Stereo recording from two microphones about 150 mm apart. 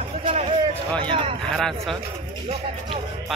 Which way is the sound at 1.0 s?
35° right (ahead or behind).